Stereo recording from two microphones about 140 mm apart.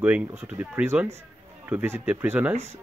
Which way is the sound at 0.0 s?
10° right (ahead or behind).